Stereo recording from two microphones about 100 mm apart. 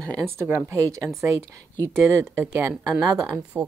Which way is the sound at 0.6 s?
30° right (ahead or behind).